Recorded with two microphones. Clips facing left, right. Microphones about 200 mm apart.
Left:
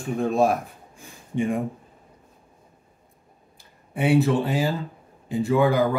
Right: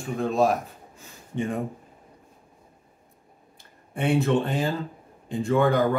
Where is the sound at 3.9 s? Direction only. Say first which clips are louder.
Left 2 dB; 5° left (ahead or behind).